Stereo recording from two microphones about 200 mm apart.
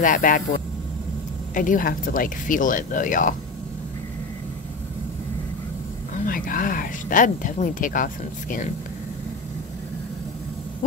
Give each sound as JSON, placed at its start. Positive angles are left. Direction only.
{"t": 0.0, "sound": "speech", "side_deg": 40}
{"t": 6.2, "sound": "speech", "side_deg": 45}